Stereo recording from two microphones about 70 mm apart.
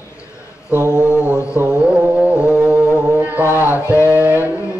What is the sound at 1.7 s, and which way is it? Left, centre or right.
Music, centre.